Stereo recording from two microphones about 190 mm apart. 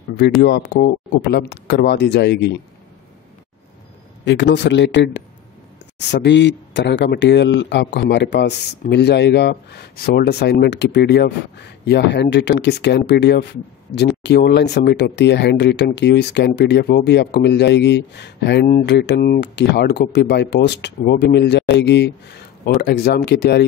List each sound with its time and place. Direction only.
0.4 s speech: 55° left (ahead or behind)
4.2 s speech: 70° left (ahead or behind)